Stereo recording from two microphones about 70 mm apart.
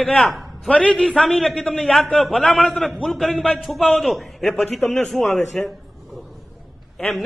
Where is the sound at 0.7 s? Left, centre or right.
Centre.